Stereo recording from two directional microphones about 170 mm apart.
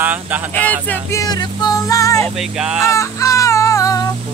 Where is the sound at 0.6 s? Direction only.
10° left (ahead or behind).